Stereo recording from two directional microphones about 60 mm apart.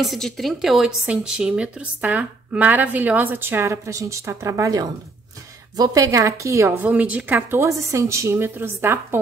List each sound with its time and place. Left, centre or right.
0.0 s a woman's voice: centre; by 3.6 s right
3.6 s speech: right
6.9 s speech: right
7.5 s a woman's voice: right